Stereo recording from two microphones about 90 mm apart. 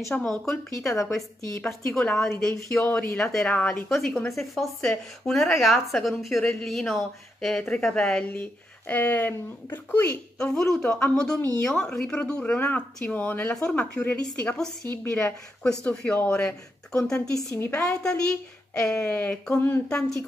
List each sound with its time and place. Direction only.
0.1 s speech: 5° left (ahead or behind)
8.3 s speech: 20° left (ahead or behind)
10.4 s speech: 5° left (ahead or behind)
12.5 s speech: 20° left (ahead or behind)
15.6 s speech: 10° left (ahead or behind)
18.8 s speech: 30° left (ahead or behind)